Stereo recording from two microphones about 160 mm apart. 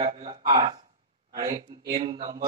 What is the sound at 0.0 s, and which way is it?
A man's voice, 30° right (ahead or behind).